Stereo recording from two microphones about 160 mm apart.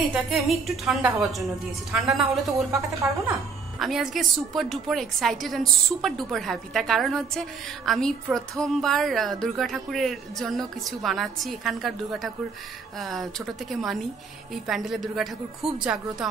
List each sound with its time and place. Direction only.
0.1 s a woman's voice: centre (ahead or behind)
2.5 s speech: 20° right (ahead or behind)
3.8 s a woman's voice: centre (ahead or behind)